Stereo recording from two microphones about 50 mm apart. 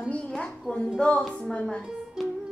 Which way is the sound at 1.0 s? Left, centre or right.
Centre.